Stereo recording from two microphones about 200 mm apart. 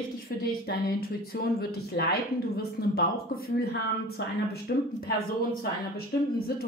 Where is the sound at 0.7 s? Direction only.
50° left (ahead or behind).